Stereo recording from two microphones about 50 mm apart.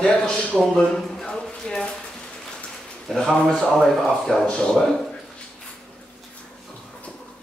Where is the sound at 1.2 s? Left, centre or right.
Centre.